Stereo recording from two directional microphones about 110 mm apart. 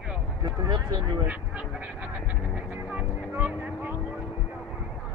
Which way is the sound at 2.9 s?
15° right (ahead or behind).